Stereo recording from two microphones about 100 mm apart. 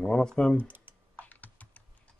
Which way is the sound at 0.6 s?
20° right (ahead or behind).